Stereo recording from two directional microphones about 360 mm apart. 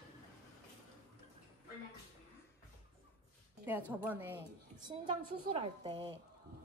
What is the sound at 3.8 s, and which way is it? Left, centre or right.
Speech, centre.